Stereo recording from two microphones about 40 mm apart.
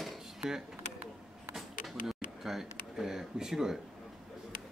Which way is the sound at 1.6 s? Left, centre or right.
Centre.